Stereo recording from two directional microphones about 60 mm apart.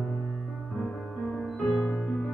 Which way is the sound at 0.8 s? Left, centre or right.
Centre.